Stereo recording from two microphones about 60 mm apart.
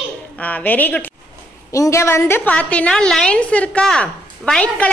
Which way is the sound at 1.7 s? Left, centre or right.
Left.